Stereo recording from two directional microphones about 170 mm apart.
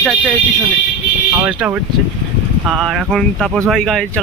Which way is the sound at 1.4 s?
10° right (ahead or behind).